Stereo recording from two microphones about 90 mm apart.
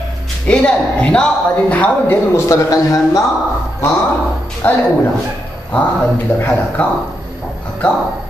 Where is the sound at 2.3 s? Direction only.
40° left (ahead or behind).